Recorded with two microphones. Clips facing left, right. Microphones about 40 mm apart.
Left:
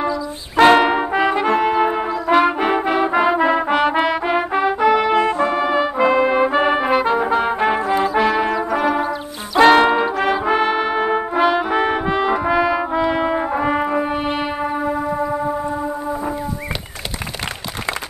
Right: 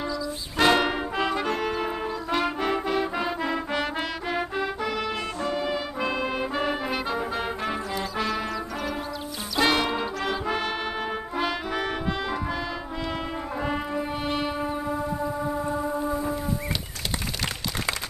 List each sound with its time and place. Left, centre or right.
0.6 s music: left
9.8 s brass instrument: left
14.1 s music: left
14.7 s music: left